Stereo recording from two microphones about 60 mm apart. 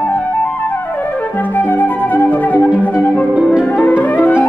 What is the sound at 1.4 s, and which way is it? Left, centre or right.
Music, left.